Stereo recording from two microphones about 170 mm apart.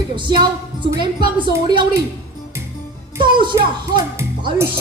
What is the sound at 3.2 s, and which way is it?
Music, 30° right (ahead or behind).